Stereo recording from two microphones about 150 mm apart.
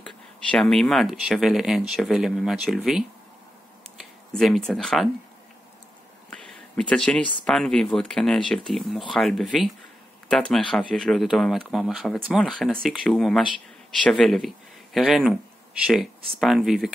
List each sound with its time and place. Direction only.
0.0 s speech: 5° left (ahead or behind)
4.4 s speech: 5° left (ahead or behind)
6.3 s speech: 5° left (ahead or behind)